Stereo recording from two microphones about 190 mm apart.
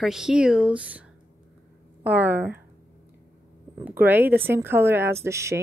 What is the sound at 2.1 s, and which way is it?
Speech, 10° right (ahead or behind).